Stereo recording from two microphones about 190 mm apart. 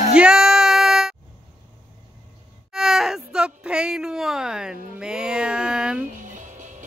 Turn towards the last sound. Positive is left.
turn(degrees=-40)  # may be behind; listen again after turning